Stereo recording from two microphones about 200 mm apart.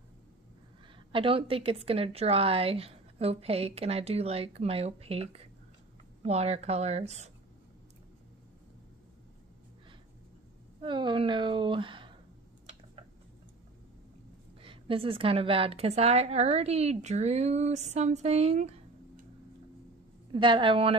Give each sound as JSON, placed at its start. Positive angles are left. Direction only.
{"t": 0.9, "sound": "a woman's voice", "side_deg": -25}
{"t": 10.8, "sound": "a woman's voice", "side_deg": -25}
{"t": 14.6, "sound": "a woman's voice", "side_deg": -25}
{"t": 20.3, "sound": "a woman's voice", "side_deg": -25}